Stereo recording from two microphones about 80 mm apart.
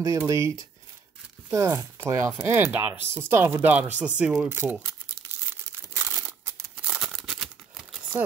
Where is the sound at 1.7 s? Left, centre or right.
Right.